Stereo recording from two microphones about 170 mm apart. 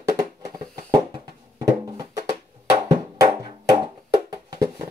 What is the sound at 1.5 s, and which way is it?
Music, 20° right (ahead or behind).